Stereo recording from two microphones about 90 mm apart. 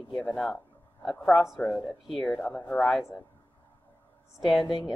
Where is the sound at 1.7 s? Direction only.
15° left (ahead or behind).